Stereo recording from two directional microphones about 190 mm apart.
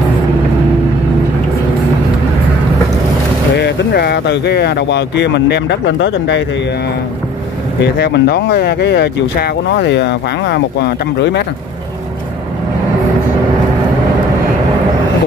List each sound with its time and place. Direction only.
3.5 s speech: 60° left (ahead or behind)
7.8 s speech: 60° left (ahead or behind)